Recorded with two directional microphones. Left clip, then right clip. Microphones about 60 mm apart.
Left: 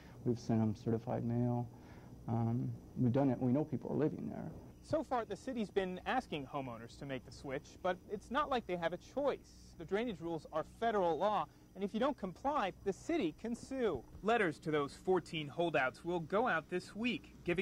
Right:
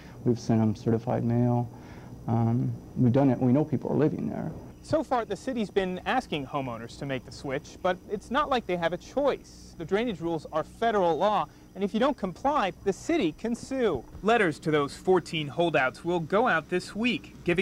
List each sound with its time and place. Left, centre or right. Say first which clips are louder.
0.2 s speech: right 10 dB; left